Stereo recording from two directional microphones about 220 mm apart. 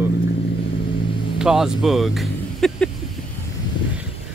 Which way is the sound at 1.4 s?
Centre (ahead or behind).